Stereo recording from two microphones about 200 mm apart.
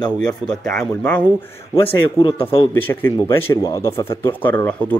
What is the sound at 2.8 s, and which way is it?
A man's voice, 10° left (ahead or behind).